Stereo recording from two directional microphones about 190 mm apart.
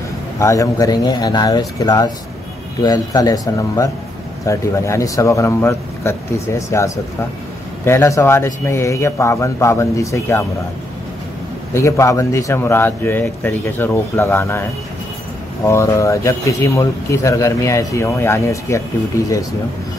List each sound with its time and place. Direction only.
0.4 s speech: 15° left (ahead or behind)
11.7 s speech: 15° left (ahead or behind)